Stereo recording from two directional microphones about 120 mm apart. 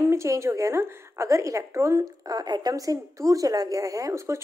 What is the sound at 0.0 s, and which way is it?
Speech, 25° right (ahead or behind).